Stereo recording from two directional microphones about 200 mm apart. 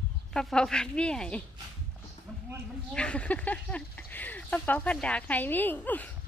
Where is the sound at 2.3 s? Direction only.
5° left (ahead or behind).